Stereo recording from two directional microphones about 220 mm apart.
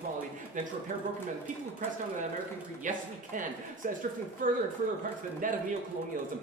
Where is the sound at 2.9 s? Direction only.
35° right (ahead or behind).